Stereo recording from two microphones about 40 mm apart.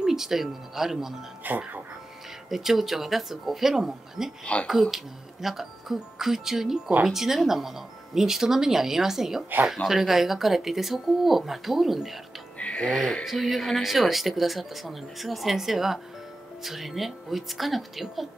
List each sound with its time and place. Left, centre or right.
0.0 s speech: centre
1.5 s speech: right
2.5 s speech: centre
4.5 s speech: left
4.9 s speech: centre
12.5 s music: left
13.2 s speech: centre